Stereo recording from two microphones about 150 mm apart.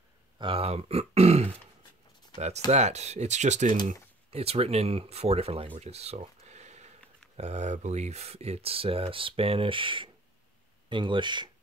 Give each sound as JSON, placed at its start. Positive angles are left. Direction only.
{"t": 0.4, "sound": "speech", "side_deg": -40}